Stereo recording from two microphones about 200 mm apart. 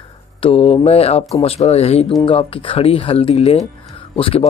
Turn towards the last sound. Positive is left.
turn(degrees=30)  # may be behind; listen again after turning